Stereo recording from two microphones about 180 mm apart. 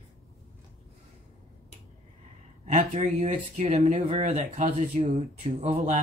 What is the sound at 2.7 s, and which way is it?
Speech, 40° right (ahead or behind).